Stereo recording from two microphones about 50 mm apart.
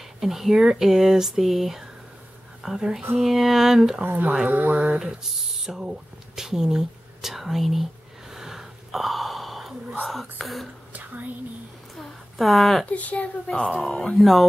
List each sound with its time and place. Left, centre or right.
0.2 s speech: centre
4.0 s speech: right
4.9 s a sound: centre
10.4 s speech: centre
10.9 s a sound: right
11.9 s a sound: centre
12.8 s speech: left
13.5 s speech: centre
13.7 s speech: centre